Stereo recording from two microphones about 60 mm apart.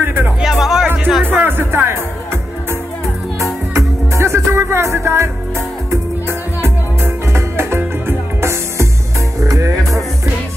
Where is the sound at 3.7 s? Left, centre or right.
Right.